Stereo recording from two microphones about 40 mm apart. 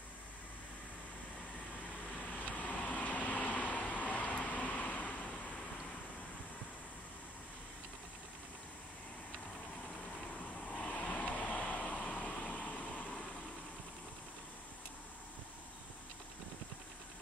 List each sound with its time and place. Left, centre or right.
2.3 s vehicle: left
10.7 s vehicle: left